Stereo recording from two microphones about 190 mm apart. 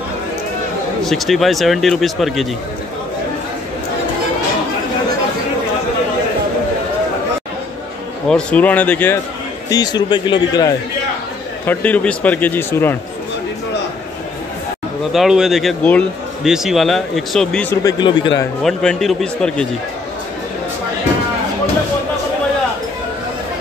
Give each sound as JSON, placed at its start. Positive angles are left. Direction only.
{"t": 1.0, "sound": "a man's voice", "side_deg": 0}
{"t": 8.3, "sound": "speech", "side_deg": 5}
{"t": 9.7, "sound": "speech", "side_deg": 20}
{"t": 11.6, "sound": "speech", "side_deg": 10}
{"t": 15.1, "sound": "a man's voice", "side_deg": 0}
{"t": 17.8, "sound": "speech", "side_deg": 25}
{"t": 18.6, "sound": "a man's voice", "side_deg": 5}